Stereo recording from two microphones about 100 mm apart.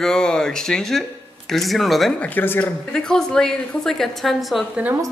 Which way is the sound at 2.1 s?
20° left (ahead or behind).